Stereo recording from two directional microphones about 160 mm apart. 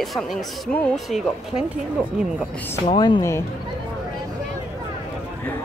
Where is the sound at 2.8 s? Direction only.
30° left (ahead or behind).